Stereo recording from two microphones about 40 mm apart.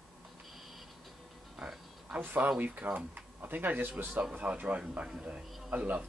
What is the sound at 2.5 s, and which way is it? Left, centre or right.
Speech, right.